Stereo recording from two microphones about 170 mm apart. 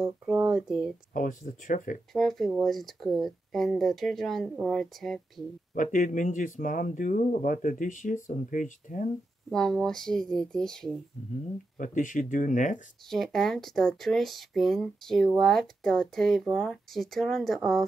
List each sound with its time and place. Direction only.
0.0 s speech: 5° right (ahead or behind)
1.1 s speech: 50° left (ahead or behind)
2.1 s speech: centre (ahead or behind)
5.8 s speech: 50° left (ahead or behind)
9.5 s speech: 5° left (ahead or behind)
11.8 s speech: 50° left (ahead or behind)
13.1 s speech: centre (ahead or behind)